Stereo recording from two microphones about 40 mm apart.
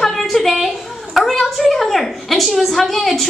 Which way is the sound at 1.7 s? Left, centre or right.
Centre.